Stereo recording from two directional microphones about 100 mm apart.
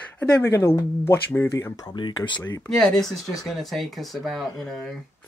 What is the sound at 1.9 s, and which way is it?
Speech, 50° left (ahead or behind).